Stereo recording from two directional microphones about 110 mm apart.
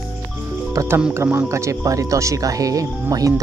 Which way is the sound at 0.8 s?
30° right (ahead or behind).